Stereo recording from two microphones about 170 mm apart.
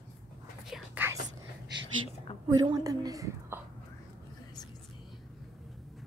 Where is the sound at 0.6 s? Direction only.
5° right (ahead or behind).